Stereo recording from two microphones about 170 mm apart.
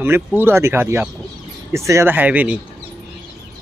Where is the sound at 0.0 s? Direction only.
15° right (ahead or behind).